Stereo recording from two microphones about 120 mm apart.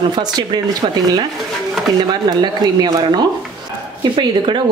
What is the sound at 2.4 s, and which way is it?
Speech, 35° right (ahead or behind).